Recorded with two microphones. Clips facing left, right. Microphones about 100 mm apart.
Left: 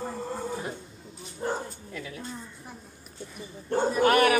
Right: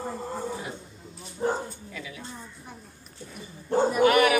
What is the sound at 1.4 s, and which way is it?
Bow-wow, 20° right (ahead or behind).